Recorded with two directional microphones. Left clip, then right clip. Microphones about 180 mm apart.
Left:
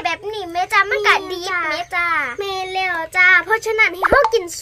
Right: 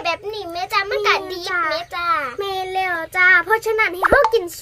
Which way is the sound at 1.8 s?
25° left (ahead or behind).